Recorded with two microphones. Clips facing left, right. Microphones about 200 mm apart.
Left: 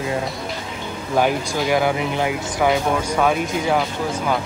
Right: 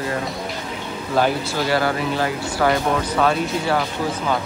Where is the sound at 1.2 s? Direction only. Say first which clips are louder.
Left 1 dB; 15° left (ahead or behind).